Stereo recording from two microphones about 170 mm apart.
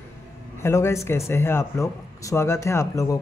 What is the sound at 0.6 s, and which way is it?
Speech, 15° left (ahead or behind).